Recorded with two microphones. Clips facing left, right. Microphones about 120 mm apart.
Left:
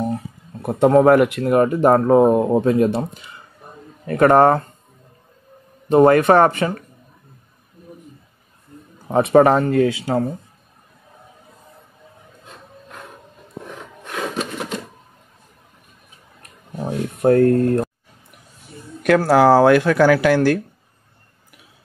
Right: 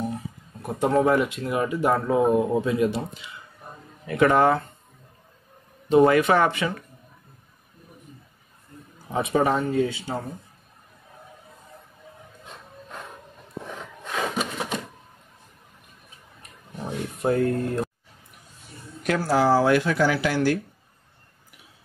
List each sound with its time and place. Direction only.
0.7 s speech: 60° left (ahead or behind)
5.9 s speech: 50° left (ahead or behind)
9.0 s speech: 60° left (ahead or behind); by 10.2 s 90° left
14.0 s a sound: 10° right (ahead or behind)
17.2 s speech: 55° left (ahead or behind)
19.0 s speech: 70° left (ahead or behind)